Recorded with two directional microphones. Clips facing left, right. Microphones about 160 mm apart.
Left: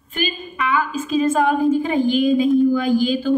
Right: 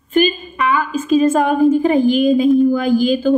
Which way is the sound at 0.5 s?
45° right (ahead or behind).